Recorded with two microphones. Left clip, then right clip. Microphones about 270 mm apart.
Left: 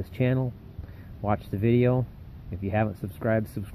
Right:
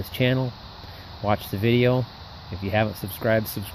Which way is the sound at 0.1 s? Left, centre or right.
Centre.